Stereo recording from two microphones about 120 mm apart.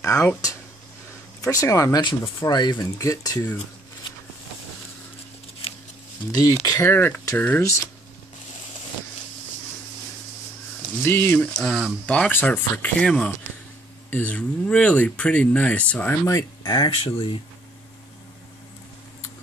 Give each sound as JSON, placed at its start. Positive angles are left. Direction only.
{"t": 0.0, "sound": "speech", "side_deg": 25}
{"t": 1.4, "sound": "speech", "side_deg": 25}
{"t": 5.6, "sound": "a sound", "side_deg": 55}
{"t": 6.6, "sound": "speech", "side_deg": 25}
{"t": 11.0, "sound": "speech", "side_deg": 20}
{"t": 11.5, "sound": "speech", "side_deg": 0}
{"t": 12.3, "sound": "speech", "side_deg": 15}
{"t": 16.3, "sound": "speech", "side_deg": 25}
{"t": 16.7, "sound": "speech", "side_deg": 40}